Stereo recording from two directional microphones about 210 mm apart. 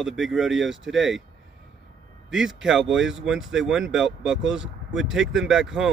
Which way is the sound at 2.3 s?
5° right (ahead or behind).